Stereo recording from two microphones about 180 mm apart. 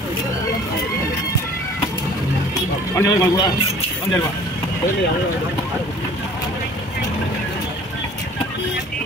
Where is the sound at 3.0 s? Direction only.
20° left (ahead or behind).